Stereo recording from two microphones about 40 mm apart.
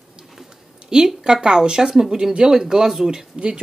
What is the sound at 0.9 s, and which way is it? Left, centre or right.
Speech, centre.